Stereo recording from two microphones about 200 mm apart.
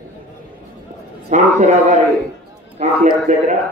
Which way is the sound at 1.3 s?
40° right (ahead or behind).